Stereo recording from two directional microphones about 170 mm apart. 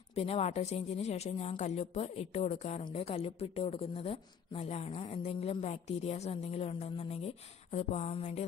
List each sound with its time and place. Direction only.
0.1 s a woman's voice: 35° left (ahead or behind)